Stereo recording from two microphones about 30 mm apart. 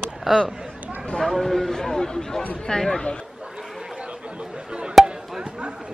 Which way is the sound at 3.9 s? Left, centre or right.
Right.